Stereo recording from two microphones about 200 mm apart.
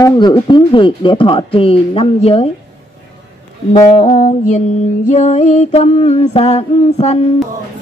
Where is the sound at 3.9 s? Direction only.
35° left (ahead or behind).